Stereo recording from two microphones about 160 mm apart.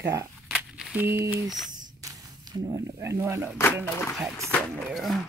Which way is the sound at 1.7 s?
25° right (ahead or behind).